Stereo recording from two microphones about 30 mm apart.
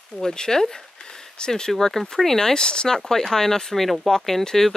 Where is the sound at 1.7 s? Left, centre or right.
Centre.